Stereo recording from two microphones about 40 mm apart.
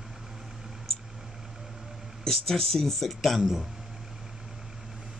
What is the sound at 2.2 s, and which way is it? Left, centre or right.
Speech, centre.